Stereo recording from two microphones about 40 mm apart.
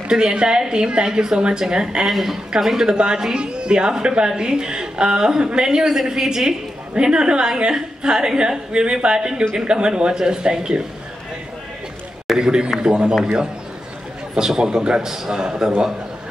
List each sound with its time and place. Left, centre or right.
0.1 s a woman's voice: right
2.0 s a man's voice: centre
2.9 s a woman's voice: centre
5.8 s a man's voice: centre
12.4 s a woman's voice: centre
14.3 s a man's voice: centre